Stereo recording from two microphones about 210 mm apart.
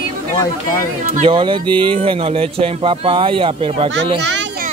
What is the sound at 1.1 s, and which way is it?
Speech, 25° right (ahead or behind).